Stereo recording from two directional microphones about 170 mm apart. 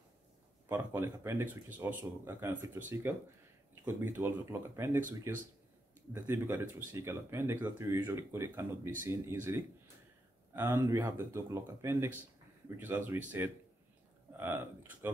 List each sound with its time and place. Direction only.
0.7 s speech: 15° right (ahead or behind)
14.3 s speech: 15° right (ahead or behind)